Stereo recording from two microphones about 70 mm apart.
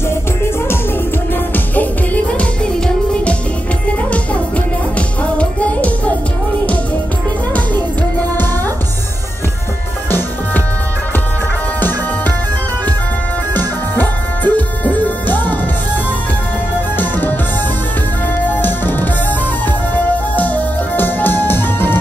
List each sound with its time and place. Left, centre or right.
2.3 s music: centre
4.9 s music: centre
13.9 s music: left
16.9 s music: left
18.5 s music: left
20.3 s music: left